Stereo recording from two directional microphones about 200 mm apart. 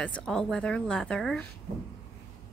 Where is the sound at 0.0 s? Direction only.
5° left (ahead or behind).